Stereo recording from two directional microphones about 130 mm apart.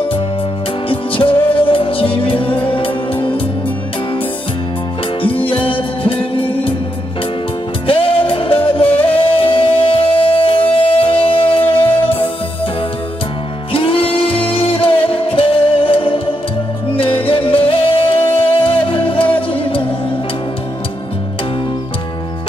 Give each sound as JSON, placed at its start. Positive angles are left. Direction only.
{"t": 0.8, "sound": "music", "side_deg": 45}
{"t": 5.2, "sound": "music", "side_deg": 45}
{"t": 7.8, "sound": "music", "side_deg": 45}
{"t": 13.7, "sound": "music", "side_deg": 45}